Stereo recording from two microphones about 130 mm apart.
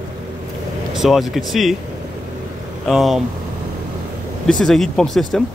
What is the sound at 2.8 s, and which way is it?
Speech, centre (ahead or behind).